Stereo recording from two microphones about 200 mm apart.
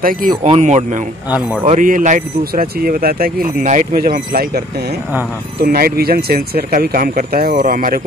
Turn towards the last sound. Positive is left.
turn(degrees=-45)  # may be behind; listen again after turning